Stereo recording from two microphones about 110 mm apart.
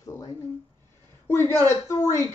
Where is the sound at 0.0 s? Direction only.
30° left (ahead or behind).